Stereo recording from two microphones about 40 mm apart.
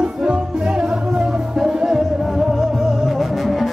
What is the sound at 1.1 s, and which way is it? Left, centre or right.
Music, centre.